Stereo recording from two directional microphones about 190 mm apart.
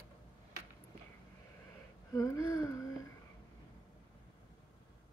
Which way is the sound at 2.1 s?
15° left (ahead or behind).